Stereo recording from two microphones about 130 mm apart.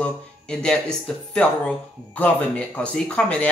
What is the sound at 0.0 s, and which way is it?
Speech, 5° left (ahead or behind).